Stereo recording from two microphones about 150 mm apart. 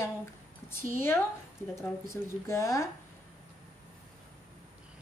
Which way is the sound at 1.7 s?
20° left (ahead or behind).